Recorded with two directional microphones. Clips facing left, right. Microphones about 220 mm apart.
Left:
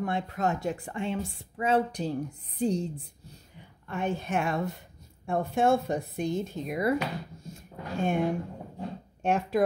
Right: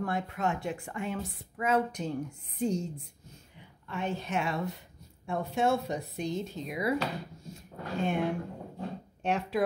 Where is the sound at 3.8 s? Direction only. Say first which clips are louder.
Left 3 dB; 50° left (ahead or behind).